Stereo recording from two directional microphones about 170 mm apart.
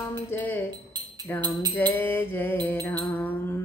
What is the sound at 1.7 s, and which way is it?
Music, 10° left (ahead or behind).